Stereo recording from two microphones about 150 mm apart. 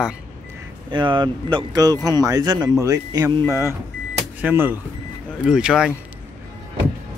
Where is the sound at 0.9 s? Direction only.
30° right (ahead or behind).